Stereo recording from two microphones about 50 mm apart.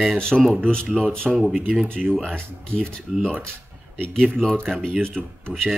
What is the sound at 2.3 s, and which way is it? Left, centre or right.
Speech, centre.